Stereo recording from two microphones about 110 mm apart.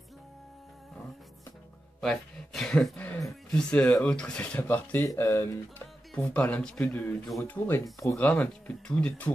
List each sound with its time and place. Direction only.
2.0 s speech: 5° left (ahead or behind)
7.8 s speech: 30° left (ahead or behind)
8.2 s speech: 15° left (ahead or behind)